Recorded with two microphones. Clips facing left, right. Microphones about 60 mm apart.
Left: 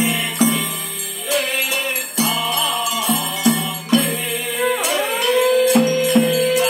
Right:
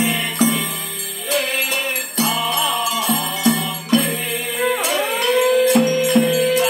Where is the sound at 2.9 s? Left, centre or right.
Right.